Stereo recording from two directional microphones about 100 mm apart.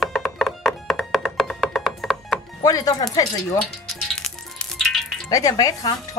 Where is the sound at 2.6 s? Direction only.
40° left (ahead or behind).